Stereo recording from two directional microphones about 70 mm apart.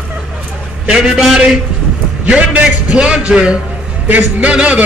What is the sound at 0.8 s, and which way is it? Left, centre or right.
Speech, centre.